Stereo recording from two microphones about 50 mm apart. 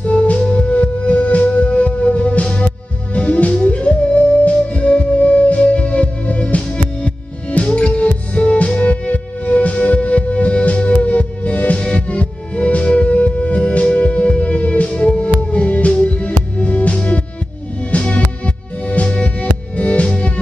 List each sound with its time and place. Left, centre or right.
0.0 s music: left